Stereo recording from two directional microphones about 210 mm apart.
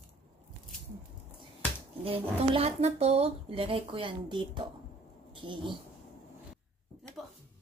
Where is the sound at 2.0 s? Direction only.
25° right (ahead or behind).